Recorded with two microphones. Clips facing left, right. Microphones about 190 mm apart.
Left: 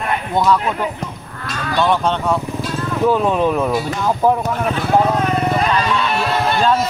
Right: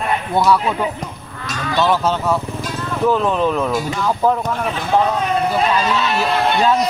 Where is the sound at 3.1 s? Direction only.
15° left (ahead or behind).